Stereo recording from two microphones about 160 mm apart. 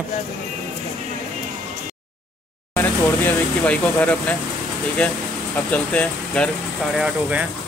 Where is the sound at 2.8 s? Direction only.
10° left (ahead or behind).